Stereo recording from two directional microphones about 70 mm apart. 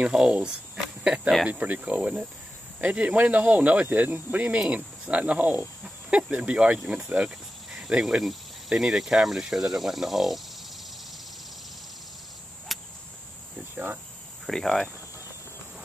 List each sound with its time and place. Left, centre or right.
0.0 s speech: centre
1.5 s cricket: right
4.6 s speech: centre
12.7 s cricket: centre
14.4 s speech: centre